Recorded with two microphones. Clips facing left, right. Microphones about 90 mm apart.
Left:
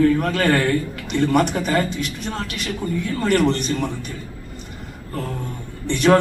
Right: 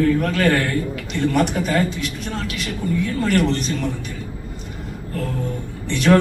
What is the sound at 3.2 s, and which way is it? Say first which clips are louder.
Speech: left 2 dB; 45° left (ahead or behind).